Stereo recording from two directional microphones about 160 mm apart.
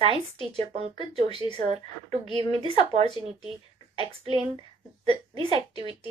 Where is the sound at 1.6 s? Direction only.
40° right (ahead or behind).